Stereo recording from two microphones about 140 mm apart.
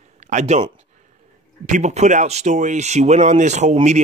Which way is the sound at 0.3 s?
55° right (ahead or behind).